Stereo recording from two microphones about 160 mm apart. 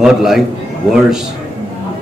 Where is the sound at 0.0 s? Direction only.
Centre (ahead or behind).